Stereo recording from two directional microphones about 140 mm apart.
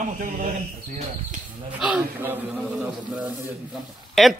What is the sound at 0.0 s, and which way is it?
Speech, 70° right (ahead or behind).